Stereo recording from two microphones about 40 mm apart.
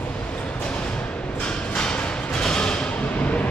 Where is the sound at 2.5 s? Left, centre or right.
Left.